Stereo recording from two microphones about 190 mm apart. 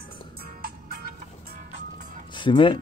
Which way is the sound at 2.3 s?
25° left (ahead or behind).